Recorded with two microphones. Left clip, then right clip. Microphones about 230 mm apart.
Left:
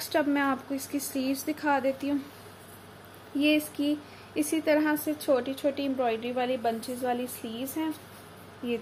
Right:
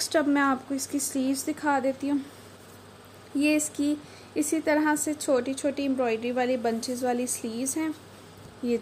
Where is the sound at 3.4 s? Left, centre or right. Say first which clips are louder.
Right 1 dB; right.